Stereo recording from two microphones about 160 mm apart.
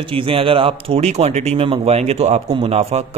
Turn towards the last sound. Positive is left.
turn(degrees=-40)  # may be behind; listen again after turning